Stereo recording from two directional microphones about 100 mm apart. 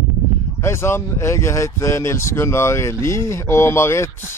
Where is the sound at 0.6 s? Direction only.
25° left (ahead or behind).